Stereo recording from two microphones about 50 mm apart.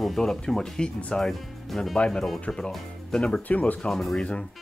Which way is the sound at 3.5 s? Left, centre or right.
Left.